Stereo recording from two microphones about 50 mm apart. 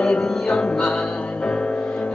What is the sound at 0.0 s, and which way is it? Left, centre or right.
Music, centre.